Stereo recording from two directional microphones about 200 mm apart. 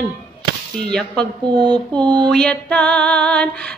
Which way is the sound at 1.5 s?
20° right (ahead or behind).